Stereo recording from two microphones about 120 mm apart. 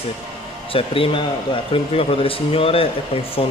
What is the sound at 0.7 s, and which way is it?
Speech, 50° left (ahead or behind).